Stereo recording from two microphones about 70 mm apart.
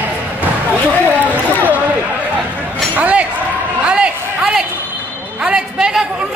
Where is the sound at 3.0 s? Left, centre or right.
Centre.